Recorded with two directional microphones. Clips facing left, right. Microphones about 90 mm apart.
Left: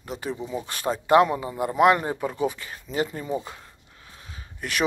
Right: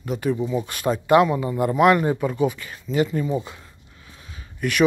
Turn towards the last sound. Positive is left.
turn(degrees=30)  # may be behind; listen again after turning